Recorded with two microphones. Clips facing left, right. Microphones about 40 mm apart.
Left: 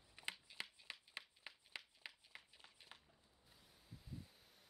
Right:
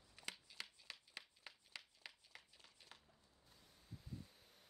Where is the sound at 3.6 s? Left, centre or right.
Centre.